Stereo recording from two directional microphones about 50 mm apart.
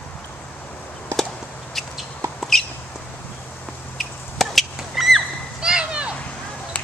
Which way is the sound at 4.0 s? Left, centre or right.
Centre.